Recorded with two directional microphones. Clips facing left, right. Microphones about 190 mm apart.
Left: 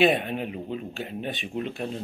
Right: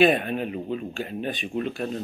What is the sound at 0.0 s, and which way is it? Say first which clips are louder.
Speech: right 2 dB; 20° left (ahead or behind).